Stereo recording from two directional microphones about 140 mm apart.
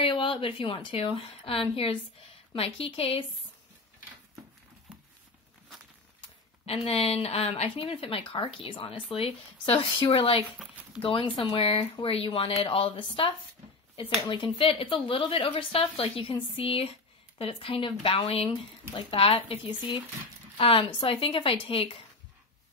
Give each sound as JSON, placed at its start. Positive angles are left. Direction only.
{"t": 0.0, "sound": "speech", "side_deg": 35}
{"t": 6.6, "sound": "speech", "side_deg": 45}